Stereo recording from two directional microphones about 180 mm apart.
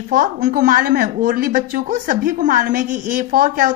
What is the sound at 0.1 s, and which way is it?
A woman's voice, 50° right (ahead or behind).